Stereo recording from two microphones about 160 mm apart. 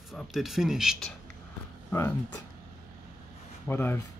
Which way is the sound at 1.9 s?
15° left (ahead or behind).